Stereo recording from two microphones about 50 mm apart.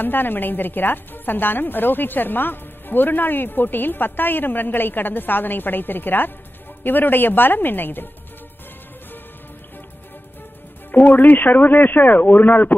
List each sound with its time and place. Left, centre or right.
0.0 s a woman's voice: left
10.9 s speech: left